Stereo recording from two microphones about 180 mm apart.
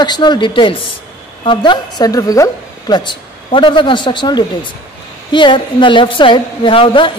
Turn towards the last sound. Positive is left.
turn(degrees=30)  # may be behind; listen again after turning